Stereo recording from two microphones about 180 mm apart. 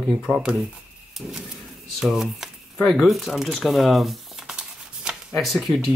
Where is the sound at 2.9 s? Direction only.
Centre (ahead or behind).